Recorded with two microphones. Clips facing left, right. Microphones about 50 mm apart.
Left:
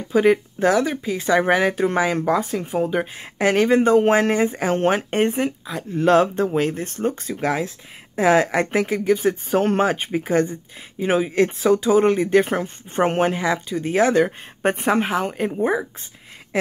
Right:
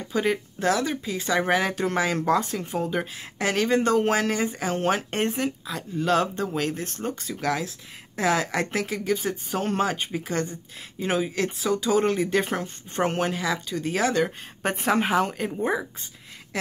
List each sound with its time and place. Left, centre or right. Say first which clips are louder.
0.1 s speech: left 9 dB; left
3.2 s speech: left 8 dB; left
4.9 s speech: left 6 dB; centre
7.2 s speech: left 4 dB; left
9.3 s speech: left 8 dB; left
15.0 s speech: left 2 dB; centre